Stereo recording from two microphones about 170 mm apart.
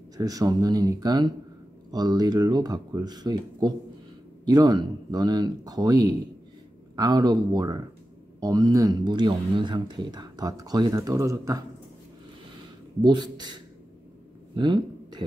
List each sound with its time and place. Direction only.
0.2 s speech: 20° right (ahead or behind)
13.0 s speech: 25° right (ahead or behind)
14.5 s a sound: 25° right (ahead or behind)